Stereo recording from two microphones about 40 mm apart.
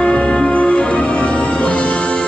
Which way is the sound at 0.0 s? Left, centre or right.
Left.